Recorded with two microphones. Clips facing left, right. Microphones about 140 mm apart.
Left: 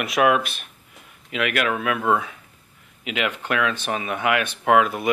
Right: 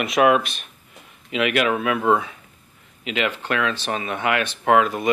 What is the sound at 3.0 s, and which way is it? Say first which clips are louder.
Speech: right 1 dB; 10° left (ahead or behind).